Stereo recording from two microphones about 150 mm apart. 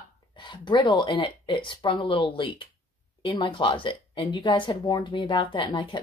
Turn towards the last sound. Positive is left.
turn(degrees=35)  # may be behind; listen again after turning